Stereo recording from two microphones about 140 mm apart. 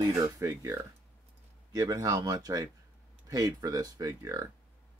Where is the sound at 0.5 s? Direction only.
20° right (ahead or behind).